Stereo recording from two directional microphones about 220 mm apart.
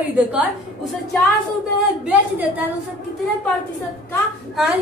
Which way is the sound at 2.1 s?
5° right (ahead or behind).